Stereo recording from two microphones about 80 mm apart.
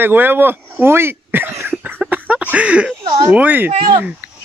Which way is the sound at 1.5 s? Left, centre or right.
Right.